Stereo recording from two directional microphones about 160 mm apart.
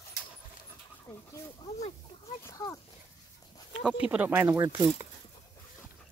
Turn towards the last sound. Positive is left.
turn(degrees=-20)  # may be behind; listen again after turning